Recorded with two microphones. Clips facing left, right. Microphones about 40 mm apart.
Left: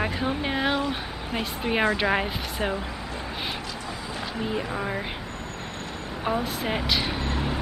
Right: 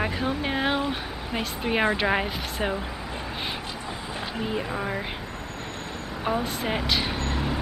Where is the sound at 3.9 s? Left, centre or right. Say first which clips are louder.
Right 1 dB; centre.